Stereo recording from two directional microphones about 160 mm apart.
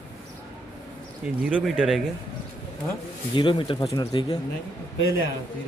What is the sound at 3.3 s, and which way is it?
Speech, 30° left (ahead or behind).